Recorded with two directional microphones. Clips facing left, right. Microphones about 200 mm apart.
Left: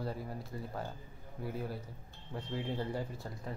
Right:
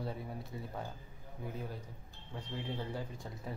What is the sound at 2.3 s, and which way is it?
Speech, 10° left (ahead or behind).